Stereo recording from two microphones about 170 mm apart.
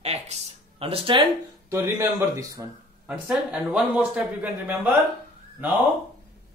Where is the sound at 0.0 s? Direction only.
40° right (ahead or behind).